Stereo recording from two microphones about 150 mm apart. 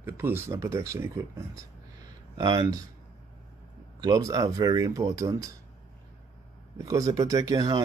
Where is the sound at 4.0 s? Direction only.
25° right (ahead or behind).